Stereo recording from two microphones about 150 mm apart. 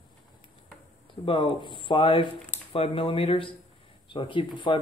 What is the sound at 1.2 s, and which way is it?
Speech, 35° left (ahead or behind).